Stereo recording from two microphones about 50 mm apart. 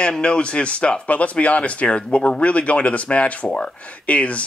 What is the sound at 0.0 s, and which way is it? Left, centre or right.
Speech, centre.